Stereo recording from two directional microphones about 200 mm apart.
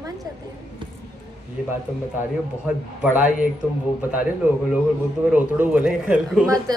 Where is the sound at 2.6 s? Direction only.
5° right (ahead or behind).